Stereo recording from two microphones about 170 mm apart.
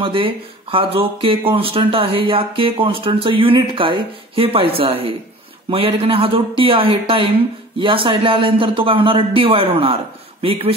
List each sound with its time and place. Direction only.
0.0 s speech: 30° right (ahead or behind)